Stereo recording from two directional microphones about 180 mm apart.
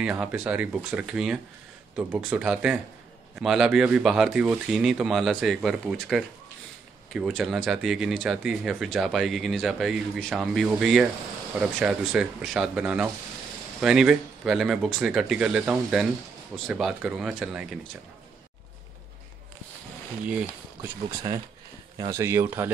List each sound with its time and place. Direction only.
0.0 s speech: 5° right (ahead or behind)
21.9 s speech: 20° right (ahead or behind)